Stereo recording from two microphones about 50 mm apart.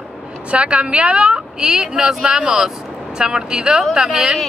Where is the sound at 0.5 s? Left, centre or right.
Right.